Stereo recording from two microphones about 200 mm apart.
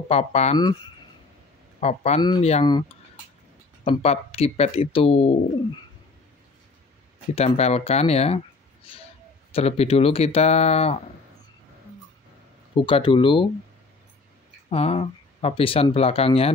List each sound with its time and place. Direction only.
0.1 s speech: 30° left (ahead or behind)
1.8 s speech: 35° left (ahead or behind)
2.2 s speech: 20° left (ahead or behind)
3.8 s speech: 30° left (ahead or behind)
7.3 s speech: 30° left (ahead or behind)
9.5 s speech: 30° left (ahead or behind)
12.7 s speech: 25° left (ahead or behind)
14.7 s speech: 30° left (ahead or behind)